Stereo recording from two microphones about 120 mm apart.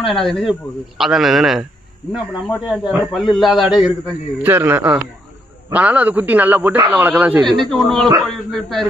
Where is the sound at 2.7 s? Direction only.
5° right (ahead or behind).